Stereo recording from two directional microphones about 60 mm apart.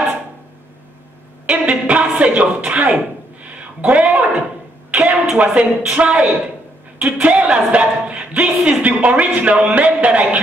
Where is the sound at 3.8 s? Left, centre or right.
Right.